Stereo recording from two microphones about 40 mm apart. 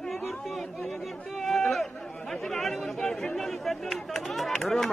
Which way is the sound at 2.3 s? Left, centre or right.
Centre.